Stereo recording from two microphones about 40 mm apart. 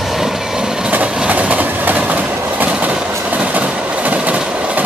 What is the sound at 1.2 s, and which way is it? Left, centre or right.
Train, right.